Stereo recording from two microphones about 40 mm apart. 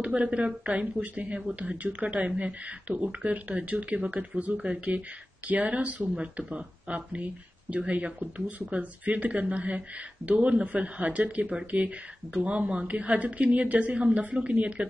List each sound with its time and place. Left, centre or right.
0.0 s speech: right